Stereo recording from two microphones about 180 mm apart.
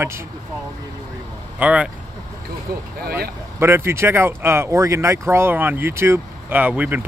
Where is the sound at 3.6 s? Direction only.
15° right (ahead or behind).